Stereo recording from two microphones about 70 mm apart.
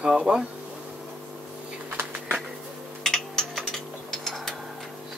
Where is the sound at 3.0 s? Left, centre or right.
Centre.